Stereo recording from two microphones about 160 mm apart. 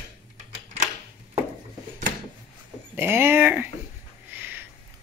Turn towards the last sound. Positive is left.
turn(degrees=-10)  # may be behind; listen again after turning